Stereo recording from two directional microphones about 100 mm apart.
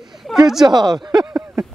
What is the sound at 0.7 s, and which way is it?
Speech, 45° right (ahead or behind).